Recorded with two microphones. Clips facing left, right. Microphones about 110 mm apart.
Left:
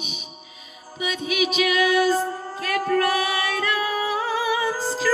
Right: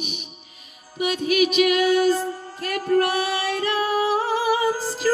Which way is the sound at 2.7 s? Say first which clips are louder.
Right 1 dB; 55° left (ahead or behind).